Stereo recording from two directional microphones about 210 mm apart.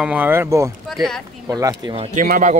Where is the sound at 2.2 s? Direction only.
40° right (ahead or behind).